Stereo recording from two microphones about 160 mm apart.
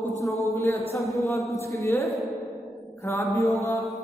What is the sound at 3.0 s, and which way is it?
Mantra, 15° left (ahead or behind).